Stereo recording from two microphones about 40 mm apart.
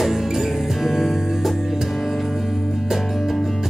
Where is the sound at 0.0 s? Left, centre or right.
Centre.